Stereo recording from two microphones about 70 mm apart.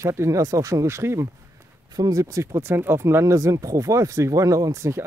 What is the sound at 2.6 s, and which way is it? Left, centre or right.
Speech, right.